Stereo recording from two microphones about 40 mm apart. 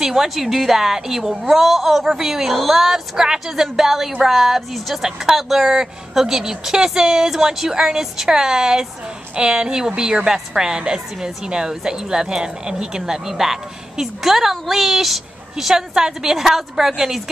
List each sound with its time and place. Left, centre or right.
0.0 s a woman's voice: centre